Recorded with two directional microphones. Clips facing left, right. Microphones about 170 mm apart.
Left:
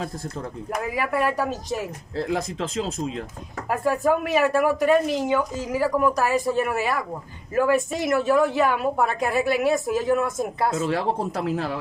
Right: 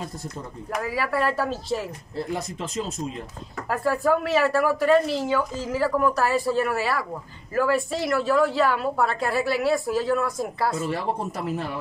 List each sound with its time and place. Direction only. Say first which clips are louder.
0.7 s speech: even; 15° left (ahead or behind)
2.1 s speech: left 4 dB; 90° left
3.6 s a woman's voice: left 1 dB; 15° left (ahead or behind)
10.7 s speech: left 3 dB; 90° left